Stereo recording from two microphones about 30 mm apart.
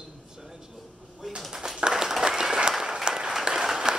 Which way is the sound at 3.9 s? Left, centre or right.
Right.